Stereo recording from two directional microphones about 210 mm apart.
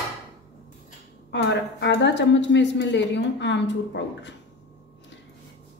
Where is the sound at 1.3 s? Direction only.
55° left (ahead or behind).